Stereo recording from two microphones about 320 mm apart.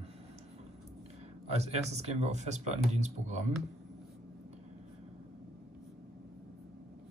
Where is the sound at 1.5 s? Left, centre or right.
Centre.